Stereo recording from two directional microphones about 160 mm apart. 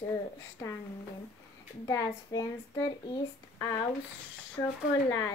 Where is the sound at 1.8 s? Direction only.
20° left (ahead or behind).